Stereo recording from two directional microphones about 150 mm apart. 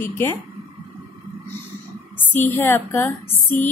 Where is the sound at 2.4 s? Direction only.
15° left (ahead or behind).